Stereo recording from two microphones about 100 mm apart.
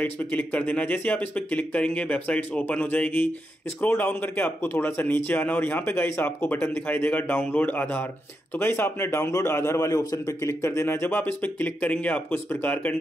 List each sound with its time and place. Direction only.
0.0 s a man's voice: 20° left (ahead or behind)